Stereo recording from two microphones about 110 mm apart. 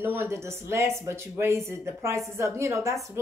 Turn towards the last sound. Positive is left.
turn(degrees=-25)  # may be behind; listen again after turning